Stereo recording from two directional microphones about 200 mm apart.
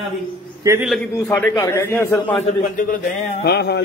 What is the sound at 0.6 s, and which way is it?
Speech, 15° right (ahead or behind).